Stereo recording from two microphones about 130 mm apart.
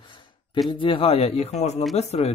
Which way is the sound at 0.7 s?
40° left (ahead or behind).